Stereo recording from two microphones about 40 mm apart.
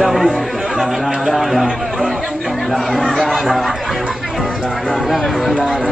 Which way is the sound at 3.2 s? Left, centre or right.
Centre.